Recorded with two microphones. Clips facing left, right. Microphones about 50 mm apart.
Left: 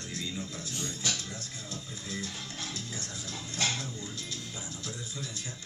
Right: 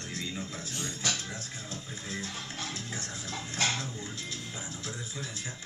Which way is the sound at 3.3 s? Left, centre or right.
Right.